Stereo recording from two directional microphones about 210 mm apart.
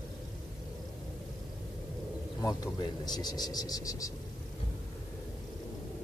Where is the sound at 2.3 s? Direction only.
20° left (ahead or behind).